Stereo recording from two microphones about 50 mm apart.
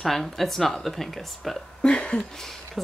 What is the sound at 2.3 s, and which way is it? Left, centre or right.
Speech, centre.